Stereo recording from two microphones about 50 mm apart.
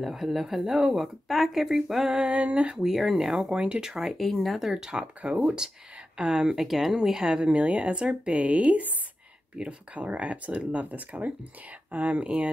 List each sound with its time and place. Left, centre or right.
0.0 s speech: centre
2.2 s a woman's voice: right
2.8 s speech: centre
3.5 s a woman's voice: right
3.8 s speech: centre
4.2 s speech: centre
4.7 s speech: centre
7.0 s a woman's voice: centre